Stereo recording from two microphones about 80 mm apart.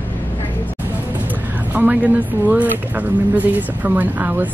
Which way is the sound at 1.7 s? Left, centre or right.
Centre.